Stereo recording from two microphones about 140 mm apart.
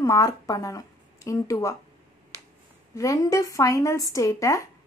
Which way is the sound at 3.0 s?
25° left (ahead or behind).